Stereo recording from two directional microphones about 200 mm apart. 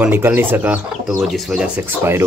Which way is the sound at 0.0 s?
10° right (ahead or behind).